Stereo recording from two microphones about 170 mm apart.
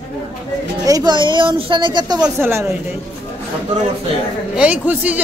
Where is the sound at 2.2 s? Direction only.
15° right (ahead or behind).